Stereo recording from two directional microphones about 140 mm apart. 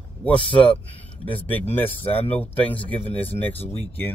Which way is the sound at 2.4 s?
10° left (ahead or behind).